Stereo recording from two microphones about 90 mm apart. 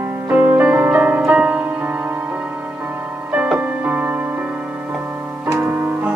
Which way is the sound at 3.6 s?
15° right (ahead or behind).